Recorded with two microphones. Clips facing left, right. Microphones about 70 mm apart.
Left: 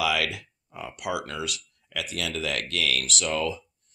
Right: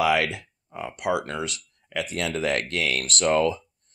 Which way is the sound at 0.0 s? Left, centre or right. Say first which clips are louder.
Right 4 dB; right.